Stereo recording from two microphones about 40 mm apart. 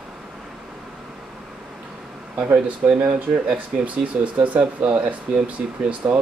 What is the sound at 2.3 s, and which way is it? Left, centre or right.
Speech, right.